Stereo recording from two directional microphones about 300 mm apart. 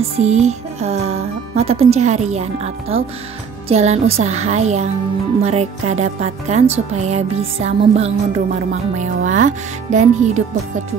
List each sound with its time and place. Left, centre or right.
0.2 s speech: right